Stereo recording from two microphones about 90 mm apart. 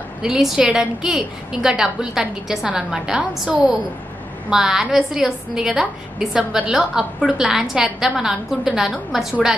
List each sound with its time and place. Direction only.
0.2 s a woman's voice: 5° right (ahead or behind)